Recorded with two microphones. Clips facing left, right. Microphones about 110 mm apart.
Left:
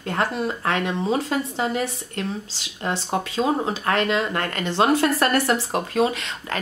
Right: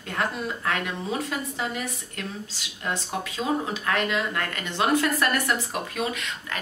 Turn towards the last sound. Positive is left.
turn(degrees=35)  # may be behind; listen again after turning